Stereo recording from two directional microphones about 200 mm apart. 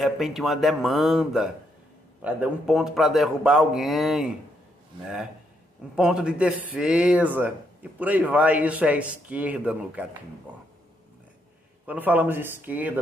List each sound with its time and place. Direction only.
0.0 s speech: centre (ahead or behind)
5.9 s a man's voice: 5° right (ahead or behind)
11.8 s a man's voice: 5° right (ahead or behind)